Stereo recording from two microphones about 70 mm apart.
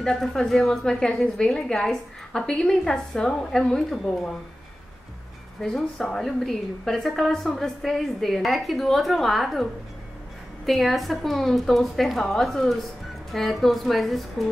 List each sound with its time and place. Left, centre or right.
0.0 s a woman's voice: centre
5.6 s a woman's voice: centre